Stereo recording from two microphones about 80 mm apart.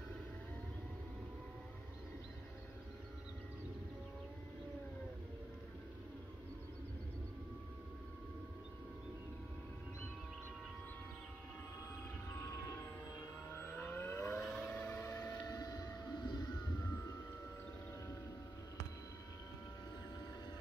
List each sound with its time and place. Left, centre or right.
13.5 s vehicle: left
14.4 s a sound: centre
14.7 s music: left
15.4 s vehicle: left